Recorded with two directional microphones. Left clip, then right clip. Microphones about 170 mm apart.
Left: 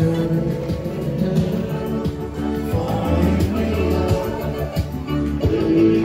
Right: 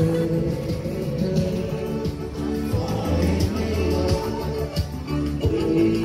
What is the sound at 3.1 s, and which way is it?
Music, 60° left (ahead or behind).